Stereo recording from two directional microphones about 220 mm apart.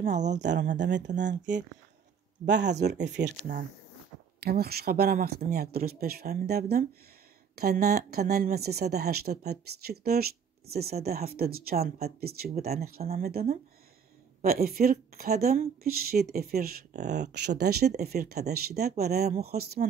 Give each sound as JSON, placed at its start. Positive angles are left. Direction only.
{"t": 0.0, "sound": "speech", "side_deg": -35}
{"t": 0.4, "sound": "speech", "side_deg": -50}